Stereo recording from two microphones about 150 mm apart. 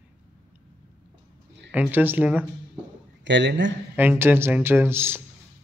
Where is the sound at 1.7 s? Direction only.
10° right (ahead or behind).